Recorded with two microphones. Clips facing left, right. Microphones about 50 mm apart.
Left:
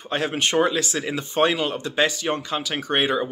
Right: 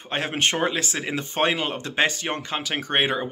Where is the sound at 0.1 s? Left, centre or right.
Right.